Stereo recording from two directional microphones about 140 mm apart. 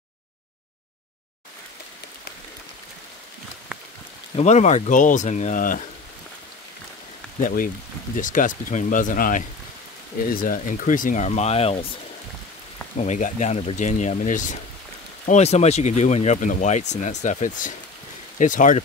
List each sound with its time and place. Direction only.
4.4 s speech: 55° left (ahead or behind); by 5.9 s 70° left (ahead or behind)
7.4 s speech: 85° left
8.2 s speech: 70° left (ahead or behind)
10.3 s speech: 85° left; by 11.9 s 45° left (ahead or behind)
12.9 s speech: 55° left (ahead or behind)
15.2 s speech: 50° left (ahead or behind)